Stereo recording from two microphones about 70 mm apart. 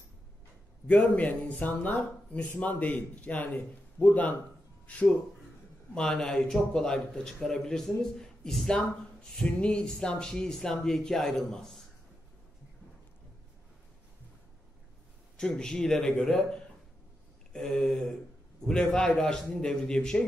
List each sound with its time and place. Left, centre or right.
0.8 s speech: left; by 11.8 s centre
15.3 s speech: centre
17.6 s a sound: centre
18.7 s speech: centre